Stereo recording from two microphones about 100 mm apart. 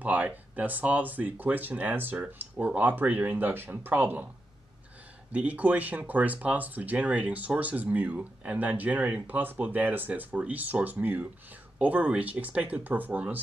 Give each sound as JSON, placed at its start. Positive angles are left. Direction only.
{"t": 0.0, "sound": "speech", "side_deg": -15}
{"t": 5.3, "sound": "speech", "side_deg": -15}